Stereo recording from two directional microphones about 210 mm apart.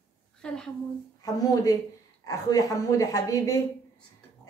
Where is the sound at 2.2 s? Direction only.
15° left (ahead or behind).